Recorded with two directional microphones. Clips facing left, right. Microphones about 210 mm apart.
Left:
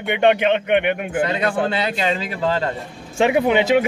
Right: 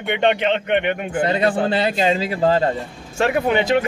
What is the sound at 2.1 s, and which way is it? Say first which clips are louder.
Speech: right 4 dB; 35° right (ahead or behind).